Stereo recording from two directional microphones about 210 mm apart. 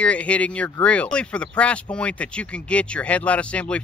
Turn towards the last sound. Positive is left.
turn(degrees=5)  # may be behind; listen again after turning